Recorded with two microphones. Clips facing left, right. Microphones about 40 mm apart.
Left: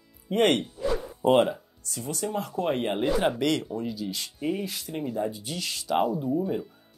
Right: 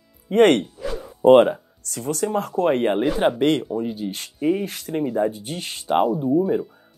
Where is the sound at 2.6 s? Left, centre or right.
Right.